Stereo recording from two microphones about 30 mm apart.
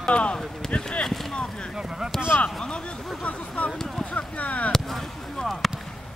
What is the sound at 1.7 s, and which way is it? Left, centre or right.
Speech, centre.